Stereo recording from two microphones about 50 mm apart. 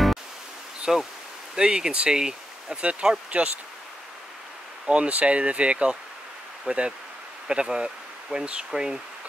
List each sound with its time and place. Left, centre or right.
0.9 s speech: centre
4.8 s speech: right